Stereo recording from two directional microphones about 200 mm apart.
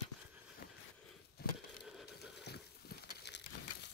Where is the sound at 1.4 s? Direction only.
50° left (ahead or behind).